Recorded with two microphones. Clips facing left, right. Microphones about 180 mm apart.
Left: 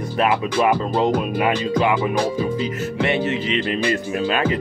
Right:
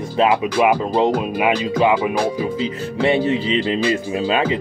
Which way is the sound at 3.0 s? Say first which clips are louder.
Right 5 dB; 30° right (ahead or behind).